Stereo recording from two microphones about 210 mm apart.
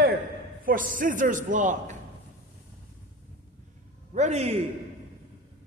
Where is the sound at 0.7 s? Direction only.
40° right (ahead or behind).